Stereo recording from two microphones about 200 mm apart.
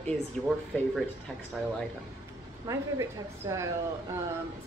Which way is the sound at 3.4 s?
15° right (ahead or behind).